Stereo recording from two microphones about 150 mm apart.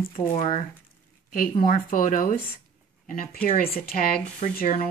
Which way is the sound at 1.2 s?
70° left (ahead or behind).